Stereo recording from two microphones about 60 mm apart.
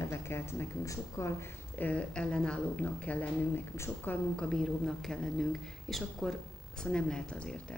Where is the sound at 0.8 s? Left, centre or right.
Left.